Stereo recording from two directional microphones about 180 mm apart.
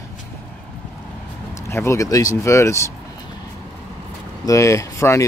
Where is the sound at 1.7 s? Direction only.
15° left (ahead or behind).